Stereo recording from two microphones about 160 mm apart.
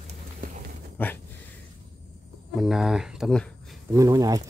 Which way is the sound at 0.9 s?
10° left (ahead or behind).